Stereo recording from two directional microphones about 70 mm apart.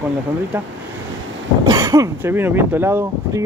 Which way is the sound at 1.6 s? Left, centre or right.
Right.